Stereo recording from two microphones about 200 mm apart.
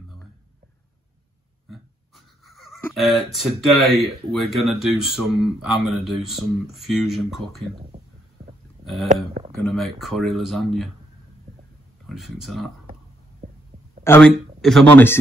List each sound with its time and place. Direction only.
1.7 s a sound: centre (ahead or behind)
2.9 s speech: centre (ahead or behind)
8.8 s speech: centre (ahead or behind)
9.1 s speech: 30° right (ahead or behind)
9.6 s speech: centre (ahead or behind)
12.1 s speech: centre (ahead or behind)
14.0 s a man's voice: 10° left (ahead or behind)